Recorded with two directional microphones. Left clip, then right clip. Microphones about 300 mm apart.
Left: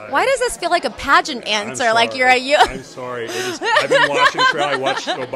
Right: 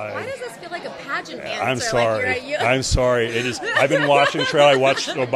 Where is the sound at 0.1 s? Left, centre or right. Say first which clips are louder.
Left 12 dB; left.